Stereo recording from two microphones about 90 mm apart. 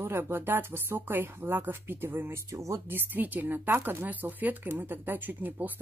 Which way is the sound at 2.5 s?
35° right (ahead or behind).